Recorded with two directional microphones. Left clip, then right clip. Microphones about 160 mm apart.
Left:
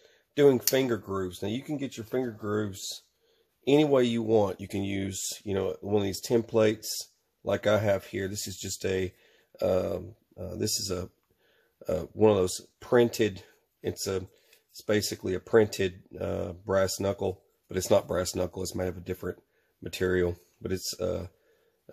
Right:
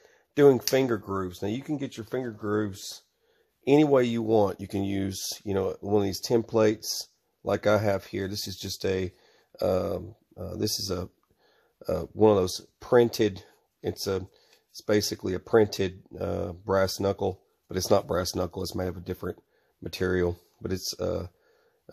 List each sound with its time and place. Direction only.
0.0 s speech: 35° right (ahead or behind)